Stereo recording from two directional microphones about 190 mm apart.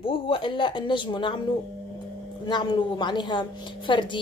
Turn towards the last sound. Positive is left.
turn(degrees=25)  # may be behind; listen again after turning